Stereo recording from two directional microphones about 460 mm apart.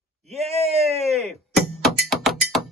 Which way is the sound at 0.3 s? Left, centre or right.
Centre.